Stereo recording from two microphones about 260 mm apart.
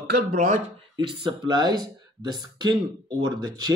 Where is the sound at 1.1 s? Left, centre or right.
Centre.